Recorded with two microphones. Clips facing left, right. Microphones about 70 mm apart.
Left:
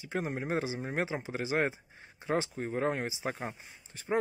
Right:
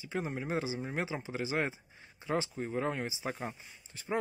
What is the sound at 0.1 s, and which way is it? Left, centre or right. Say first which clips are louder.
Speech: left 2 dB; left.